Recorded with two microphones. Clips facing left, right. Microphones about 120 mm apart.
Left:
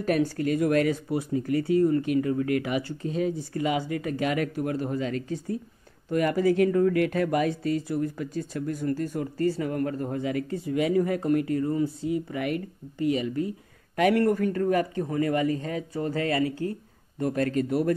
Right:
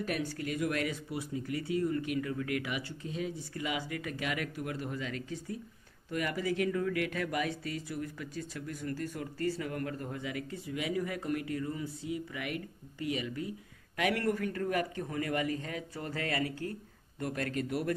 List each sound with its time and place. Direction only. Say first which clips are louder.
0.0 s speech: left 10 dB; 40° left (ahead or behind)